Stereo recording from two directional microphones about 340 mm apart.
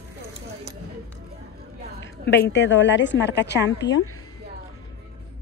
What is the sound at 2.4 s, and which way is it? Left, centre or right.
A woman's voice, left.